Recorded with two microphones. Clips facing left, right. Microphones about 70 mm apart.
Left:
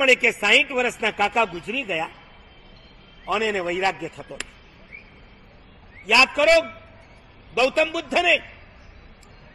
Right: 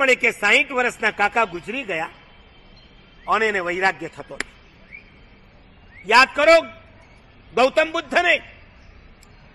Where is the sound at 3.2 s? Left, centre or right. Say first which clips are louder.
Right 3 dB; right.